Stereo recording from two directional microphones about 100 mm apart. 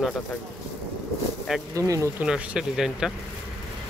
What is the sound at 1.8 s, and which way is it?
Speech, 30° right (ahead or behind).